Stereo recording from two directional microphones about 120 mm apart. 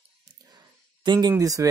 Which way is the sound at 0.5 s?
35° right (ahead or behind).